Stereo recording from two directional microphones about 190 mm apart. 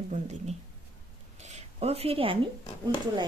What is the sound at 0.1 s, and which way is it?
Speech, 40° right (ahead or behind).